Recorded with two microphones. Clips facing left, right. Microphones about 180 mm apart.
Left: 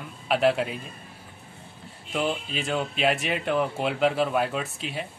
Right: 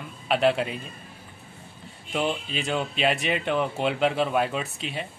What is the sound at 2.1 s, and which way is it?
Speech, centre (ahead or behind).